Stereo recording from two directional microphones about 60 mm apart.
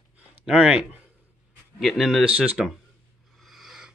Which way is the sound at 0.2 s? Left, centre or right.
Right.